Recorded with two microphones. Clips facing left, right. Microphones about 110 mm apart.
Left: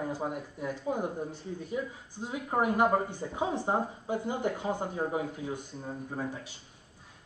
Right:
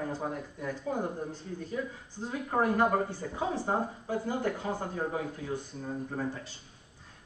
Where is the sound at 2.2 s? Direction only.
15° left (ahead or behind).